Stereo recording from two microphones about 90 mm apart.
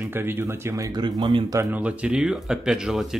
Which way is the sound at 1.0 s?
55° right (ahead or behind).